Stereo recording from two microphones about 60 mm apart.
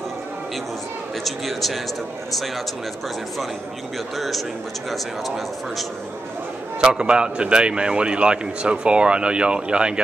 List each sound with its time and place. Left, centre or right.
1.2 s speech: centre
4.2 s speech: centre
6.8 s a man's voice: centre